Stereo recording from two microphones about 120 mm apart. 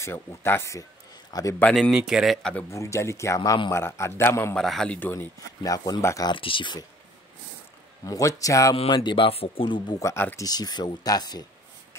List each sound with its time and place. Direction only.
0.0 s a man's voice: 20° left (ahead or behind)
1.6 s speech: centre (ahead or behind)
2.7 s speech: 25° left (ahead or behind)
3.3 s speech: 40° left (ahead or behind)
3.7 s speech: 20° left (ahead or behind)
4.6 s speech: 5° left (ahead or behind)
5.6 s speech: 30° left (ahead or behind)
6.3 s a man's voice: 45° left (ahead or behind)
8.0 s speech: 30° left (ahead or behind)
8.7 s a man's voice: 40° left (ahead or behind)
9.9 s speech: 20° left (ahead or behind)
10.4 s speech: 35° left (ahead or behind)